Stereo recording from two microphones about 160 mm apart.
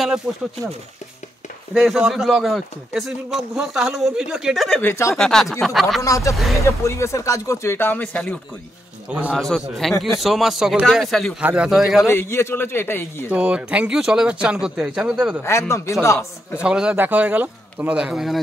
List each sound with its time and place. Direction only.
0.3 s speech: 5° right (ahead or behind)
1.7 s speech: centre (ahead or behind)
6.0 s speech: 20° left (ahead or behind)
6.3 s speech: centre (ahead or behind)
6.6 s speech: 20° left (ahead or behind)
9.1 s speech: 5° right (ahead or behind)
12.1 s speech: 15° left (ahead or behind)
13.3 s a man's voice: 5° right (ahead or behind)
15.7 s speech: 20° left (ahead or behind)
16.6 s a man's voice: 5° right (ahead or behind)